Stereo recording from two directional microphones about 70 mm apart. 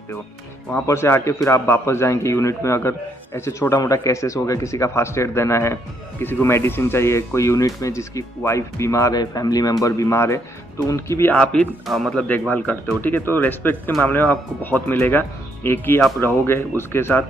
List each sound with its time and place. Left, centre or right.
0.8 s a man's voice: left
9.1 s a man's voice: left
11.3 s speech: centre
11.8 s speech: centre
12.3 s speech: left